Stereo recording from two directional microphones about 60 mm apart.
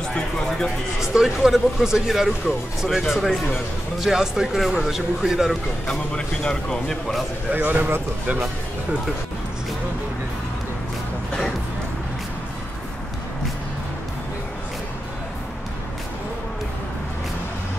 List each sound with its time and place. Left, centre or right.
0.1 s a man's voice: centre
1.0 s speech: centre
5.9 s a man's voice: centre
7.5 s a man's voice: right